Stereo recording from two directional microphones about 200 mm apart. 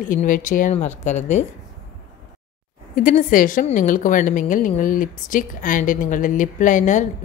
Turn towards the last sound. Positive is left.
turn(degrees=40)  # may be behind; listen again after turning